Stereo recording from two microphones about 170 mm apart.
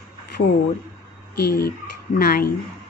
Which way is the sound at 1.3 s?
70° left (ahead or behind).